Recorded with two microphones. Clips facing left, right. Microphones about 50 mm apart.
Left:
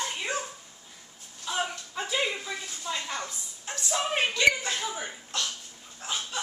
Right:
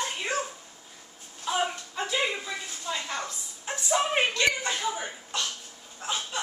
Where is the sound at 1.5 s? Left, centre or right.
Centre.